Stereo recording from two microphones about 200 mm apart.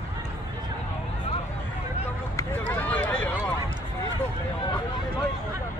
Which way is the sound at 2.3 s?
10° left (ahead or behind).